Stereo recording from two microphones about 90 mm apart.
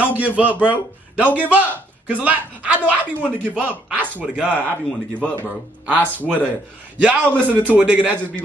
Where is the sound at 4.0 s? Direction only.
20° right (ahead or behind).